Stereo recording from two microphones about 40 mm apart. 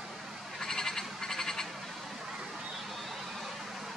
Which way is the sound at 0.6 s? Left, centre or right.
Centre.